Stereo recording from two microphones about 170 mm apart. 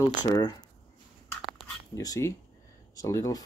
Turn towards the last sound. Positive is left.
turn(degrees=20)  # may be behind; listen again after turning